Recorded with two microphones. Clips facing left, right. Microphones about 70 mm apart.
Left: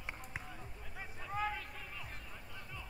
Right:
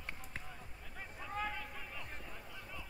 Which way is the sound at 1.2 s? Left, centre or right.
Centre.